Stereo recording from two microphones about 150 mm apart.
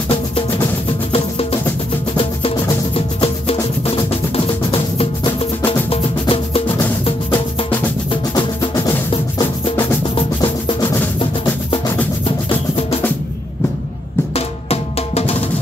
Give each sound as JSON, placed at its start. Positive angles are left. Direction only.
{"t": 1.1, "sound": "music", "side_deg": 40}
{"t": 4.6, "sound": "music", "side_deg": 40}
{"t": 8.7, "sound": "music", "side_deg": 20}
{"t": 12.3, "sound": "music", "side_deg": 40}
{"t": 14.3, "sound": "music", "side_deg": 45}